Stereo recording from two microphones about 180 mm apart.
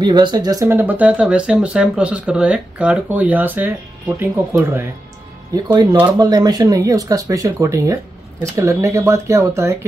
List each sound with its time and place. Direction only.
0.0 s speech: 25° right (ahead or behind)
5.7 s speech: 20° right (ahead or behind)